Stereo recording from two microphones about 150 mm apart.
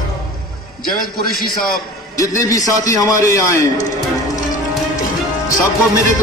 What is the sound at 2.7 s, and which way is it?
A man's voice, 20° left (ahead or behind).